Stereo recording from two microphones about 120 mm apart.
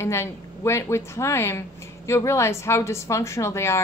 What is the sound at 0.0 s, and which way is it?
Speech, 25° left (ahead or behind).